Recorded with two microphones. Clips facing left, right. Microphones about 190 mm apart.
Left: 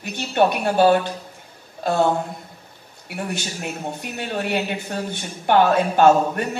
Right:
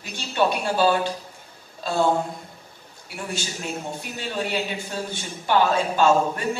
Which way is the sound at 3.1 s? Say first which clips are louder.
Left 3 dB; 60° left (ahead or behind).